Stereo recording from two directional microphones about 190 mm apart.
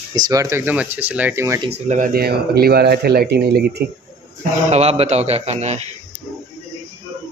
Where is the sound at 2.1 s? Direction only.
55° right (ahead or behind).